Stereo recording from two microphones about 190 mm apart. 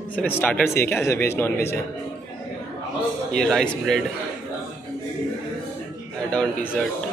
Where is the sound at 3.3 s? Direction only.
Centre (ahead or behind).